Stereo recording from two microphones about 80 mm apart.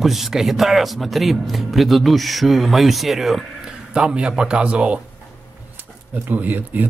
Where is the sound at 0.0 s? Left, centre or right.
Centre.